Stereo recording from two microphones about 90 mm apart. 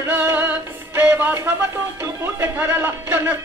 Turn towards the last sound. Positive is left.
turn(degrees=-25)  # may be behind; listen again after turning